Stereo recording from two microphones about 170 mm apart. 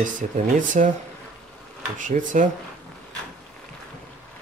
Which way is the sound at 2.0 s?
50° right (ahead or behind).